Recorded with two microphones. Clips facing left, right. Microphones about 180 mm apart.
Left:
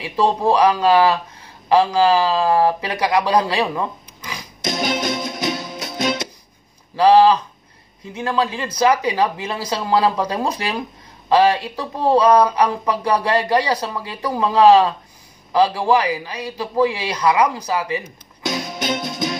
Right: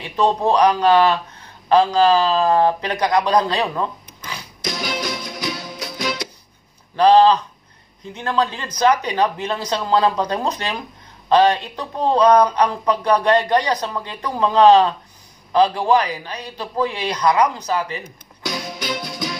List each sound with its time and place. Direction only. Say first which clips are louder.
0.0 s speech: even; 10° left (ahead or behind)
4.3 s music: left 3 dB; 25° left (ahead or behind)
7.0 s speech: even; 10° left (ahead or behind)
18.4 s music: left 3 dB; 25° left (ahead or behind)